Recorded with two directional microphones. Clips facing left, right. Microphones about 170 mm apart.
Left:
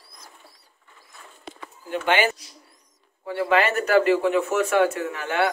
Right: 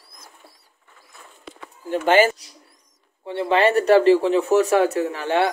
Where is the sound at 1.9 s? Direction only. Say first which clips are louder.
Right 5 dB; 40° right (ahead or behind).